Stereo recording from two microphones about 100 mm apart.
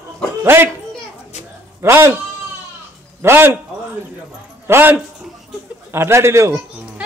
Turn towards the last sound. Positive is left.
turn(degrees=-30)  # may be behind; listen again after turning